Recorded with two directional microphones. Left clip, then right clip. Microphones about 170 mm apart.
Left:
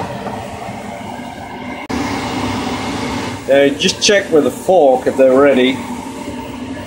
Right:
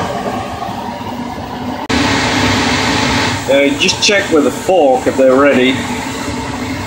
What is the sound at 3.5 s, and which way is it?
Speech, 20° left (ahead or behind).